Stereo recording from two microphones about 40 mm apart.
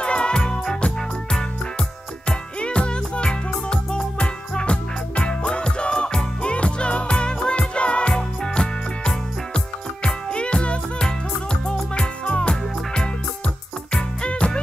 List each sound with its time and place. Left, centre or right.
0.0 s music: left
2.2 s music: left